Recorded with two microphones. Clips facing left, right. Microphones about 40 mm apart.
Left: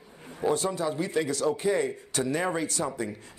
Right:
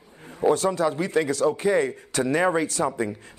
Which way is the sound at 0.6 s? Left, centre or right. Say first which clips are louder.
Right 5 dB; right.